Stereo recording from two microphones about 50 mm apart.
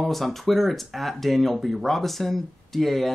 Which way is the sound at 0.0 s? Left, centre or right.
Centre.